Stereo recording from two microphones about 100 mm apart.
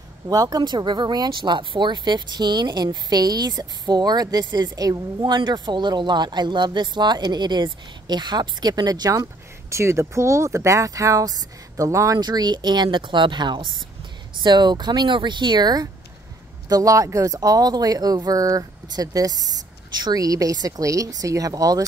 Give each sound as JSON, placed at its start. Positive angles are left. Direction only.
{"t": 0.3, "sound": "speech", "side_deg": -40}
{"t": 12.2, "sound": "speech", "side_deg": -45}